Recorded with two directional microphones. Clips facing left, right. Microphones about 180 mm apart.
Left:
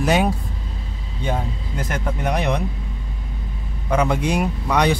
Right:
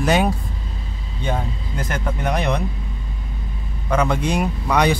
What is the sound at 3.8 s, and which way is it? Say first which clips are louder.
Speech: even; 15° left (ahead or behind).